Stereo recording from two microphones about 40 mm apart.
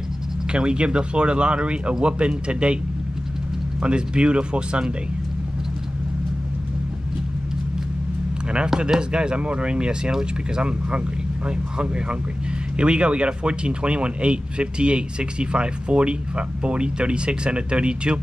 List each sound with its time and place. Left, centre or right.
0.5 s speech: right
3.8 s speech: right
9.1 s speech: right